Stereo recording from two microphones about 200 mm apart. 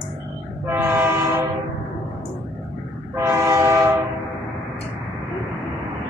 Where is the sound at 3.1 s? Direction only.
15° right (ahead or behind).